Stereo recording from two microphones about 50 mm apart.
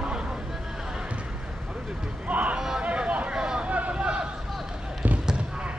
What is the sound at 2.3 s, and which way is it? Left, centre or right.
Speech, right.